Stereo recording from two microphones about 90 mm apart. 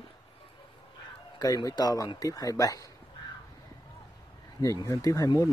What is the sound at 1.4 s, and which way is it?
Speech, 45° left (ahead or behind).